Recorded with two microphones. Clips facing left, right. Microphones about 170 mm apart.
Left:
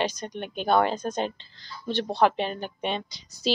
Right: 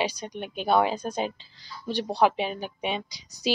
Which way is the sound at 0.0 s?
10° right (ahead or behind).